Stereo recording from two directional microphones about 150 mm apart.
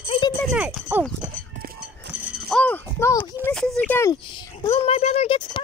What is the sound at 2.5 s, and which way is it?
Rattle, 10° left (ahead or behind).